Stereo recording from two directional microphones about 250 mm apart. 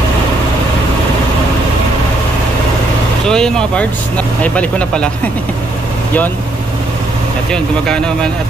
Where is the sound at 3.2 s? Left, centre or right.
Centre.